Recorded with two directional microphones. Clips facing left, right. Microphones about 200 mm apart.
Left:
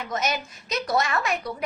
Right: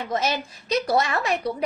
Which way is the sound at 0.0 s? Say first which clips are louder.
Right 2 dB; 30° right (ahead or behind).